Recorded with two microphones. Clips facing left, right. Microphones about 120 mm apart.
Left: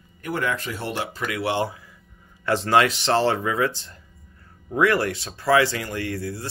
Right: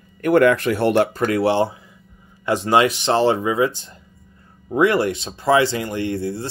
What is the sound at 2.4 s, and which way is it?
Speech, 15° right (ahead or behind).